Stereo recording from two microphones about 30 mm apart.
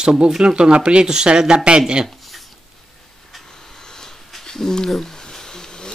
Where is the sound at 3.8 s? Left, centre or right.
Left.